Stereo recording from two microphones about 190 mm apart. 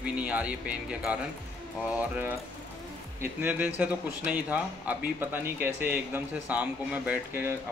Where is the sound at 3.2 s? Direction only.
10° right (ahead or behind).